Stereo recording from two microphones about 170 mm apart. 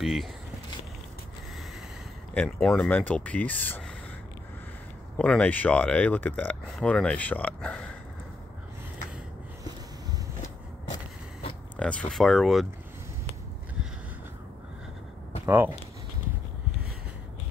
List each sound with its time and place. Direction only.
0.0 s speech: centre (ahead or behind)
2.3 s speech: 5° left (ahead or behind)
5.1 s speech: 10° left (ahead or behind)
11.7 s speech: 10° left (ahead or behind)
15.4 s speech: 10° right (ahead or behind)